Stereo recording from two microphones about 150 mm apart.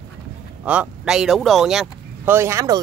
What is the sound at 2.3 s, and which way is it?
Speech, 15° right (ahead or behind).